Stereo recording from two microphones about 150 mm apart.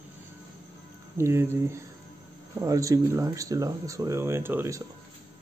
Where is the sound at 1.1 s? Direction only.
15° right (ahead or behind).